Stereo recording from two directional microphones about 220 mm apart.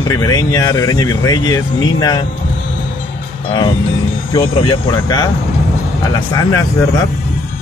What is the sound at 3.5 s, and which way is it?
Speech, 25° left (ahead or behind).